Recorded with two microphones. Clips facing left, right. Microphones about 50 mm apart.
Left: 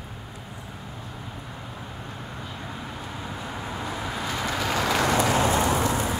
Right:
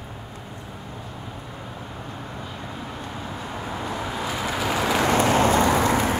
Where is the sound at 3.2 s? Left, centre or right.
Centre.